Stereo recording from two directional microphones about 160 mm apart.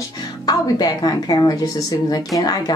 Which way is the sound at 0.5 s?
25° left (ahead or behind).